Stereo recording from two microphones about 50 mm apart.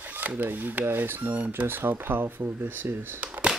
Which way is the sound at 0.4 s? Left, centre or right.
Right.